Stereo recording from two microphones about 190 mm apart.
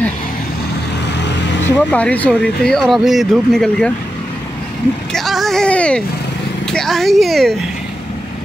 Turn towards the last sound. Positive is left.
turn(degrees=0)  # may be behind; listen again after turning